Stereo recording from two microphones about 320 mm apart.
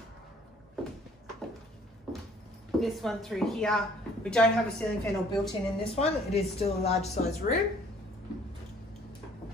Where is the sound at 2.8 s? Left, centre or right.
Centre.